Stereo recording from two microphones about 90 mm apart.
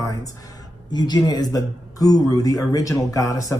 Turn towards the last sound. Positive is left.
turn(degrees=40)  # may be behind; listen again after turning